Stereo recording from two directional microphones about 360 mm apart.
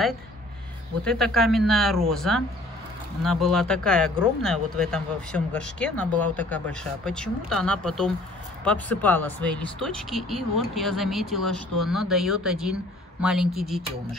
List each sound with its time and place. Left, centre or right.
1.0 s speech: centre